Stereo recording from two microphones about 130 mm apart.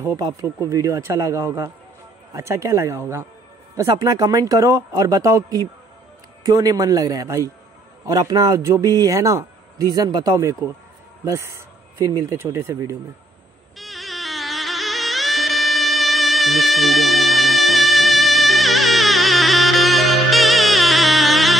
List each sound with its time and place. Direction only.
0.0 s speech: 25° right (ahead or behind)
13.7 s music: centre (ahead or behind)